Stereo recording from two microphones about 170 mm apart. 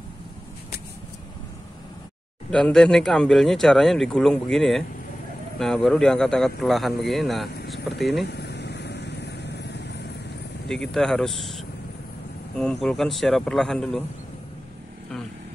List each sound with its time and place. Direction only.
2.5 s speech: 5° left (ahead or behind)
7.6 s vehicle: 75° left (ahead or behind)
8.0 s speech: centre (ahead or behind)
8.3 s vehicle: 80° left
10.7 s speech: centre (ahead or behind)